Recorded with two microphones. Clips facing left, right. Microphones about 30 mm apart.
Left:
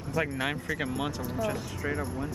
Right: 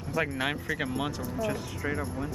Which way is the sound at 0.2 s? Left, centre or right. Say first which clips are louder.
Right 1 dB; centre.